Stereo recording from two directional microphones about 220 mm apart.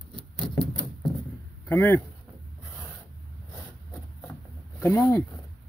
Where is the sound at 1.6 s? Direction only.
10° left (ahead or behind).